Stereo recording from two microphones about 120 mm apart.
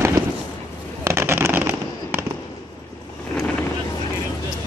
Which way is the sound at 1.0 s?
20° right (ahead or behind).